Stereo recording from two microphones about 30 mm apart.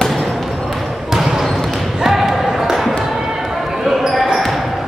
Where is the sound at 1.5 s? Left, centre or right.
Centre.